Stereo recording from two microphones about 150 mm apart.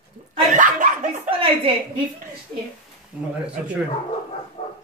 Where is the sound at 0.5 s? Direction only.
60° right (ahead or behind).